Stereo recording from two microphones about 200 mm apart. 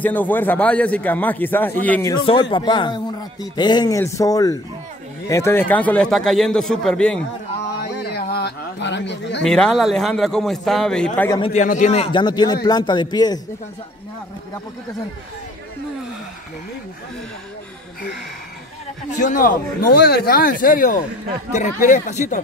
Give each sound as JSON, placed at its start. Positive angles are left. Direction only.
{"t": 0.0, "sound": "a man's voice", "side_deg": 10}
{"t": 7.8, "sound": "a sound", "side_deg": 55}
{"t": 9.4, "sound": "a man's voice", "side_deg": 5}
{"t": 11.2, "sound": "speech", "side_deg": 20}
{"t": 11.5, "sound": "speech", "side_deg": 40}
{"t": 19.0, "sound": "speech", "side_deg": 40}